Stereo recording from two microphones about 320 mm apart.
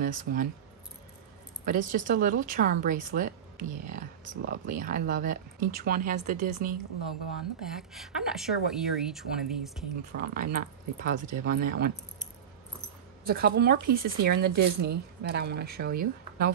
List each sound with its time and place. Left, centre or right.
0.0 s speech: right
1.7 s speech: right
7.6 s speech: centre
10.1 s speech: right
13.2 s speech: right